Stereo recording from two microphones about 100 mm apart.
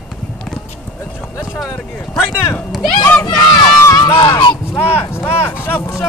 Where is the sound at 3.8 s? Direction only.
30° left (ahead or behind).